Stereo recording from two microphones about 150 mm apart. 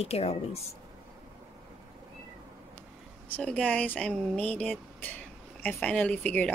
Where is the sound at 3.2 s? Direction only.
10° left (ahead or behind).